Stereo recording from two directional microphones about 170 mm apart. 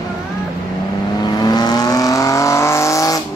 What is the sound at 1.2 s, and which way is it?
Vehicle, 25° left (ahead or behind).